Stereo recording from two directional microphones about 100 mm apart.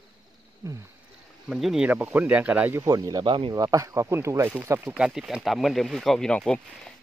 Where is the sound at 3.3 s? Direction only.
55° right (ahead or behind).